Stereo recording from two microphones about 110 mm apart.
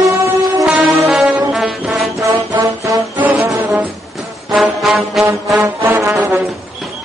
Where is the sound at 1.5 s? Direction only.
5° right (ahead or behind).